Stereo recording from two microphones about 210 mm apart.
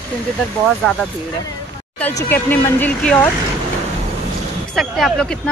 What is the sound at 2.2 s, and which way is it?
Speech, 10° left (ahead or behind).